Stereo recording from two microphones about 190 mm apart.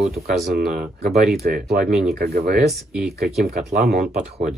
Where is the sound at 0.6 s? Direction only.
55° right (ahead or behind).